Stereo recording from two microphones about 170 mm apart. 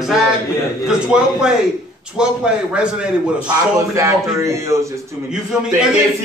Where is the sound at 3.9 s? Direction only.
15° right (ahead or behind).